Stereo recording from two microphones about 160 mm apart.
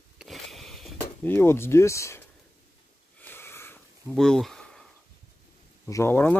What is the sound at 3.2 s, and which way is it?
Wheeze, 15° left (ahead or behind).